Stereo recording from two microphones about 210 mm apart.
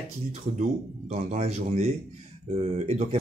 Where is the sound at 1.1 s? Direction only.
30° right (ahead or behind).